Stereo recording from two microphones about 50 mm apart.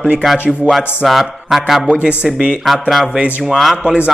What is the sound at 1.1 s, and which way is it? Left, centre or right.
Speech, centre.